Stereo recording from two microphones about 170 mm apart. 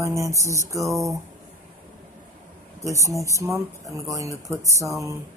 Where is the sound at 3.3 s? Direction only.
15° right (ahead or behind).